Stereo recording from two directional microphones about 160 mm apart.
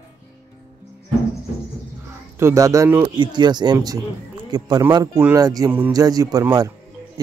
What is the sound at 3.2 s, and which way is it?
Speech, 30° right (ahead or behind).